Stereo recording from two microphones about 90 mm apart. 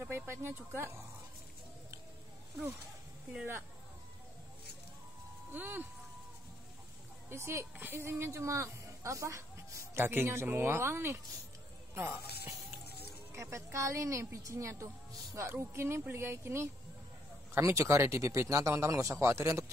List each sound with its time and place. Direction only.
0.0 s a woman's voice: 25° right (ahead or behind)
5.5 s a woman's voice: 20° right (ahead or behind)
7.2 s a woman's voice: 30° right (ahead or behind)
13.4 s a woman's voice: 35° right (ahead or behind)